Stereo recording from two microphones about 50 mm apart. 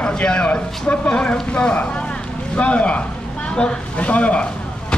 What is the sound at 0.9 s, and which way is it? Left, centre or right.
Speech, left.